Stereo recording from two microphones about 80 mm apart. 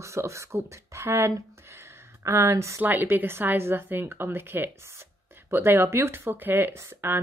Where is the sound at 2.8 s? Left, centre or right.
Right.